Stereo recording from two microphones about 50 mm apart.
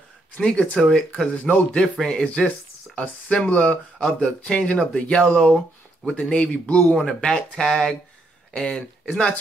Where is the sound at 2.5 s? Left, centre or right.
Left.